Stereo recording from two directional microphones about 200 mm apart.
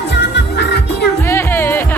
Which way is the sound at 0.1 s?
60° left (ahead or behind).